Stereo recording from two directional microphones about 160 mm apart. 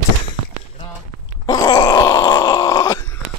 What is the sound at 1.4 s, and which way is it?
Groan, 25° left (ahead or behind).